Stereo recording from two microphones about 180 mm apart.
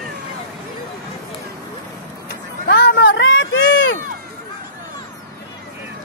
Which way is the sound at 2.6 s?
70° left (ahead or behind).